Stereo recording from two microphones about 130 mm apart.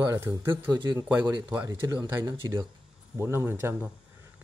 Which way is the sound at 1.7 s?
30° right (ahead or behind).